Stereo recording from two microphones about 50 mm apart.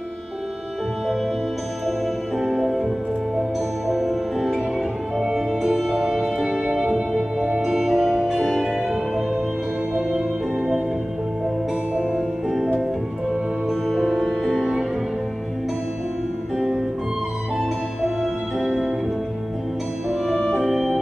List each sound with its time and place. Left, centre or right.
1.9 s music: centre
9.9 s music: right
12.1 s music: centre
13.7 s music: centre
16.5 s music: centre
18.0 s music: centre
20.2 s music: centre
20.5 s organ: centre